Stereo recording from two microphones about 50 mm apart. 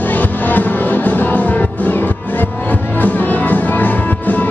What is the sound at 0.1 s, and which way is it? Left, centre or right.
Music, left.